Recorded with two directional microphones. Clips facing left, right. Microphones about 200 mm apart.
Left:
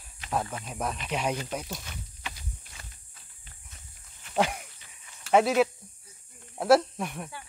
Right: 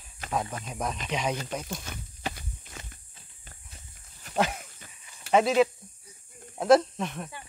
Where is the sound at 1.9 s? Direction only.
50° right (ahead or behind).